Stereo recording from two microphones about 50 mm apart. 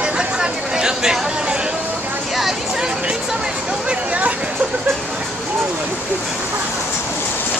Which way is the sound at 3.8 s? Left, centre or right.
Right.